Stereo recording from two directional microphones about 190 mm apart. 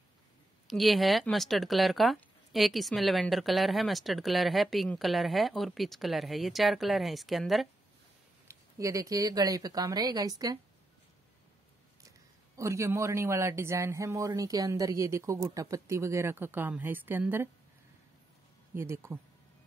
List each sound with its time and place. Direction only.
0.7 s speech: centre (ahead or behind)
8.5 s speech: 15° right (ahead or behind)
12.5 s a man's voice: 15° right (ahead or behind)
18.8 s a man's voice: 15° right (ahead or behind)